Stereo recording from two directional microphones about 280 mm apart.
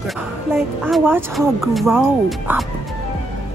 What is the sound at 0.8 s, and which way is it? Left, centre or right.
Speech, centre.